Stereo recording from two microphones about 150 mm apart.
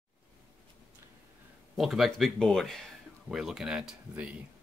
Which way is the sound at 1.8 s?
Centre (ahead or behind).